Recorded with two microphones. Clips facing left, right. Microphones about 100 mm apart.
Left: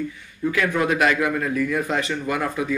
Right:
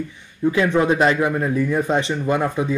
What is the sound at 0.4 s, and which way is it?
Speech, 25° right (ahead or behind).